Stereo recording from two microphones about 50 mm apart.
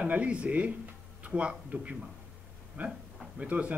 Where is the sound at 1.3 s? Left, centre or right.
Right.